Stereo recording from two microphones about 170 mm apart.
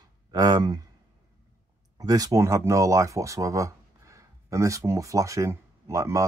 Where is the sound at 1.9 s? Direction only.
20° right (ahead or behind).